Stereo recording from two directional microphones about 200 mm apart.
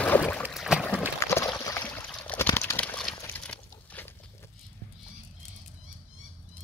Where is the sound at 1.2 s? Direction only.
15° left (ahead or behind).